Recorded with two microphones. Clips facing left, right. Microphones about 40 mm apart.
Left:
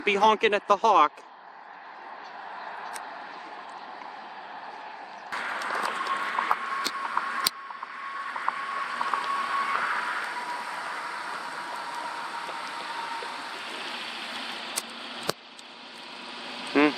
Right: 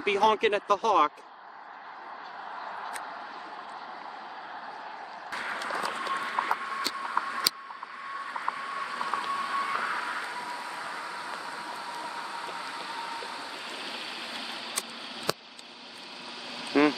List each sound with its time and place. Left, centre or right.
0.0 s speech: left
5.3 s clip-clop: centre
5.7 s a sound: centre
7.0 s vehicle: centre
8.0 s a sound: centre
16.8 s duck: left